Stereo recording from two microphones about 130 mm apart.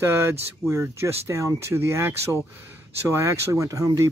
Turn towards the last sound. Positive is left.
turn(degrees=-25)  # may be behind; listen again after turning